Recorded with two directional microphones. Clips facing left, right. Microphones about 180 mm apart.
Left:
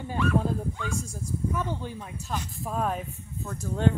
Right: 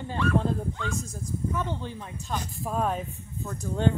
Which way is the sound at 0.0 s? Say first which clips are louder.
Even; 10° left (ahead or behind).